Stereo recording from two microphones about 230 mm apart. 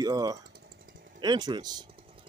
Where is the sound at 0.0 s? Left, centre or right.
Centre.